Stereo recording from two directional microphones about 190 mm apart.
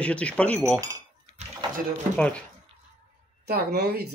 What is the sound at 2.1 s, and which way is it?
Speech, 5° left (ahead or behind).